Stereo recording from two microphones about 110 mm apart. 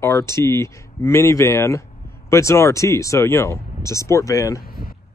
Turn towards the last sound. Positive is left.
turn(degrees=30)  # may be behind; listen again after turning